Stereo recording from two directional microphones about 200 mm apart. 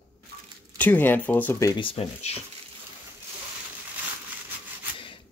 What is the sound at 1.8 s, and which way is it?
Speech, 30° left (ahead or behind).